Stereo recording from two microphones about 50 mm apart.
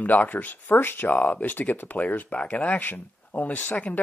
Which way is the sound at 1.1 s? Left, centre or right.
Left.